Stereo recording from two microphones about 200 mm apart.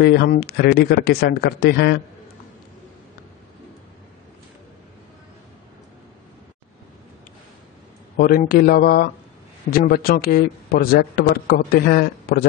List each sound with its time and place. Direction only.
0.0 s a man's voice: 55° left (ahead or behind)
8.2 s a man's voice: 45° left (ahead or behind)